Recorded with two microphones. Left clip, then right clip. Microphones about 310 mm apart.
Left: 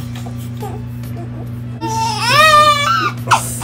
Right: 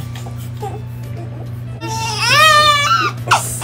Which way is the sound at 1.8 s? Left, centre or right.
Centre.